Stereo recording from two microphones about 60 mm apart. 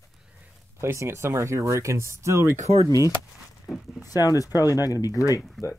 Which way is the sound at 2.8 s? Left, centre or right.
Left.